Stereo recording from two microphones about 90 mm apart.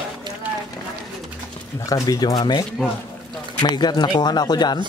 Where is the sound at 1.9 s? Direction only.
45° left (ahead or behind).